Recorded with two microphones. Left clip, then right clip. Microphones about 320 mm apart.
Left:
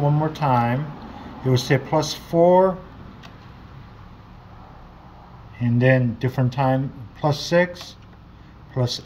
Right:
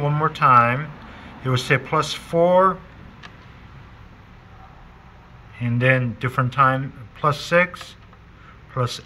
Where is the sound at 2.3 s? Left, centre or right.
Centre.